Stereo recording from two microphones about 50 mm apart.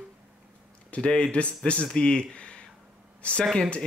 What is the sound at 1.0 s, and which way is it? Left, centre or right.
Speech, centre.